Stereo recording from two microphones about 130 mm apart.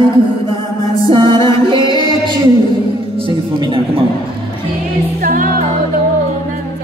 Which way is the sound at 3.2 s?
40° right (ahead or behind).